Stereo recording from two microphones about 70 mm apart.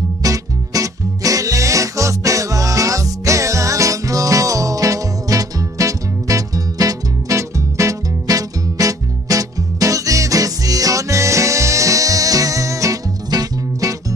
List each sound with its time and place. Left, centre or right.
0.2 s music: right